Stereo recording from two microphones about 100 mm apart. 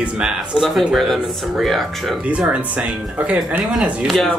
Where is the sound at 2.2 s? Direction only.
10° right (ahead or behind).